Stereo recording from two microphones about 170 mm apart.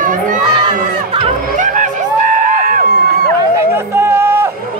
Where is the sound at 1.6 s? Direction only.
50° right (ahead or behind).